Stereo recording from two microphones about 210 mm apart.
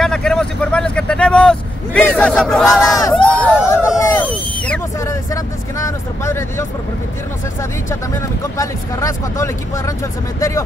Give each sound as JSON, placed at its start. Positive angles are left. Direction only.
{"t": 0.0, "sound": "vehicle", "side_deg": 5}
{"t": 3.2, "sound": "crowd", "side_deg": 5}
{"t": 4.0, "sound": "a sound", "side_deg": 10}
{"t": 8.5, "sound": "speech", "side_deg": 15}